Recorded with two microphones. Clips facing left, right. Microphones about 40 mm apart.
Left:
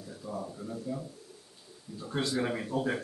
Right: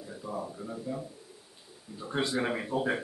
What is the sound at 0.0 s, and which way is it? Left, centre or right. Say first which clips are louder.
A man's voice: right 2 dB; centre.